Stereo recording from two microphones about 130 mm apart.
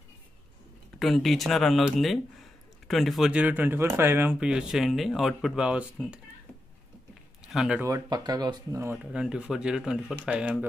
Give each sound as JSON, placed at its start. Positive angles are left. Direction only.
{"t": 0.9, "sound": "speech", "side_deg": 0}
{"t": 7.4, "sound": "speech", "side_deg": -5}
{"t": 7.8, "sound": "speech", "side_deg": -30}
{"t": 8.8, "sound": "speech", "side_deg": -10}